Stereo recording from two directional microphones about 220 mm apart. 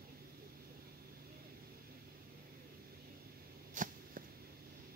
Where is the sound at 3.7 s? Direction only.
35° right (ahead or behind).